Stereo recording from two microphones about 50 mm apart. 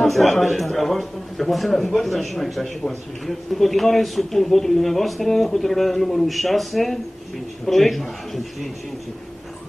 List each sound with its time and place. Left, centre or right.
0.0 s speech: centre